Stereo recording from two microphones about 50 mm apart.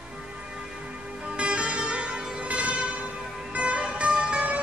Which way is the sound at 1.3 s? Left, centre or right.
Right.